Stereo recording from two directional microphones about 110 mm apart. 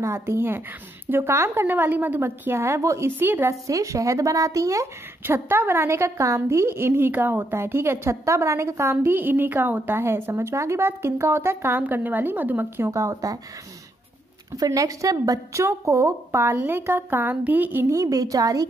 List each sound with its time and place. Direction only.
0.0 s a woman's voice: 25° right (ahead or behind)
14.5 s a woman's voice: 30° right (ahead or behind)
17.9 s a woman's voice: 30° right (ahead or behind)